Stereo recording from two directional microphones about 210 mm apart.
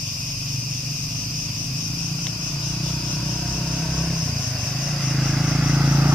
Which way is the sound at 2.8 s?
5° left (ahead or behind).